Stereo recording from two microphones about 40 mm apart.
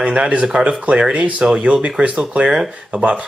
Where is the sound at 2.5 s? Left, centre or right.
Centre.